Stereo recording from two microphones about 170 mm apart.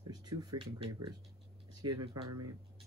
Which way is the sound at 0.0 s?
25° right (ahead or behind).